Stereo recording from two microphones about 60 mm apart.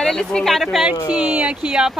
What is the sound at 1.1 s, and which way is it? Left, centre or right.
Speech, right.